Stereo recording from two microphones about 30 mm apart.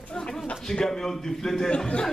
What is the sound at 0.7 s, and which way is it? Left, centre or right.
A man's voice, centre.